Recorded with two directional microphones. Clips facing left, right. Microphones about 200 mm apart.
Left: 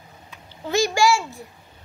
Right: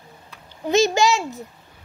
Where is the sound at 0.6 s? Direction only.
20° right (ahead or behind).